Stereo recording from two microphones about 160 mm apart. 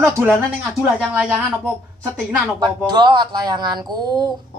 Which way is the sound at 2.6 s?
25° right (ahead or behind).